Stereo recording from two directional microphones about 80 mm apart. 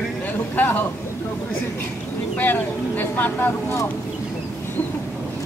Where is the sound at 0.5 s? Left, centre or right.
Left.